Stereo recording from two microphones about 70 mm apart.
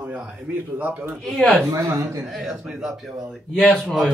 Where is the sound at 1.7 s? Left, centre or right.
Right.